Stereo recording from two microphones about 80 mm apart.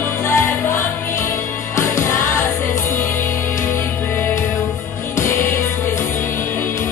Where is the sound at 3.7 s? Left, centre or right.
Left.